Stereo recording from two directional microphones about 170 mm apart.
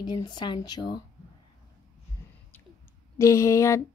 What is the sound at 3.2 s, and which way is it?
Speech, 15° left (ahead or behind).